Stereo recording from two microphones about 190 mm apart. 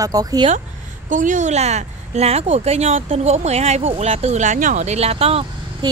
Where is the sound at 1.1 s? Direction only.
40° right (ahead or behind).